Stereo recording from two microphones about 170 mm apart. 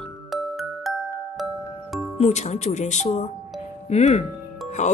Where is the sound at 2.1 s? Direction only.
40° left (ahead or behind).